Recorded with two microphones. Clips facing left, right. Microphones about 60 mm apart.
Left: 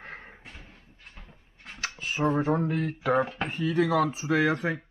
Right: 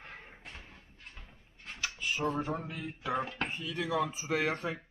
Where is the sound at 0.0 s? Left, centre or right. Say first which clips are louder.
Left 6 dB; left.